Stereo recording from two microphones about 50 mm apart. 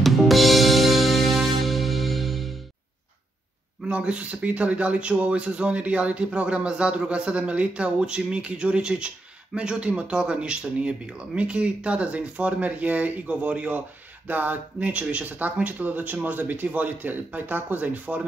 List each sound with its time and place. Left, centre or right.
0.0 s music: centre
3.8 s speech: right